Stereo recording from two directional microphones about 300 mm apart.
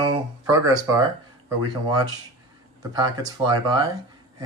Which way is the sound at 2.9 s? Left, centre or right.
Centre.